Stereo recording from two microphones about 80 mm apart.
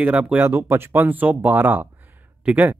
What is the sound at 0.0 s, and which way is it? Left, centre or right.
Speech, centre.